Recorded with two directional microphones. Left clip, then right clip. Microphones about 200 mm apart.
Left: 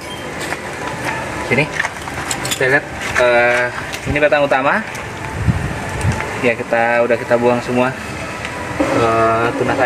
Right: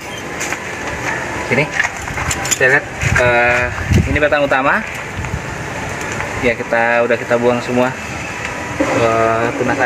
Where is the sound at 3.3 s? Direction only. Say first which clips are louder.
Even; 15° left (ahead or behind).